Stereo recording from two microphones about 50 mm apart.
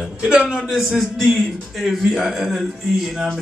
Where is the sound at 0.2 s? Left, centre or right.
Centre.